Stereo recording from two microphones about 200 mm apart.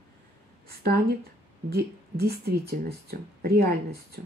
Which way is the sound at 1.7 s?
50° right (ahead or behind).